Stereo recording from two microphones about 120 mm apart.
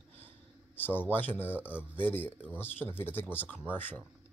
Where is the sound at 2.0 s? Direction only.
15° left (ahead or behind).